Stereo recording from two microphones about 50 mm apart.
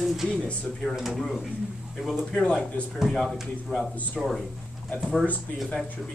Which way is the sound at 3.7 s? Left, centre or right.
Left.